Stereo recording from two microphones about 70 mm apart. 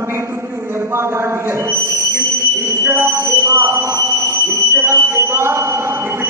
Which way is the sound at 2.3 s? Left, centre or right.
Right.